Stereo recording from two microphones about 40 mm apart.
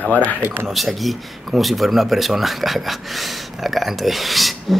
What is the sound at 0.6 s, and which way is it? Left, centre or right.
Speech, centre.